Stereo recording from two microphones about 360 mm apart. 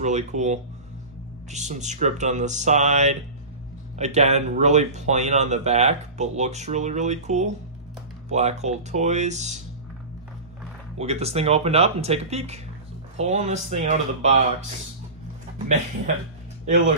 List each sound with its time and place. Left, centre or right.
0.0 s speech: centre
11.0 s speech: centre